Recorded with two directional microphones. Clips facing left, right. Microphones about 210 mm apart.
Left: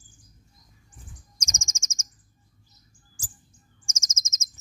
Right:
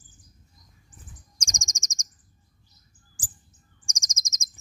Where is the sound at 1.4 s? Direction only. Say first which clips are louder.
Right 1 dB; 15° right (ahead or behind).